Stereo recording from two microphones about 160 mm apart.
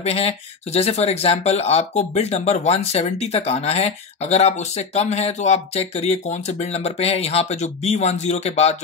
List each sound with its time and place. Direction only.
0.0 s speech: 40° left (ahead or behind)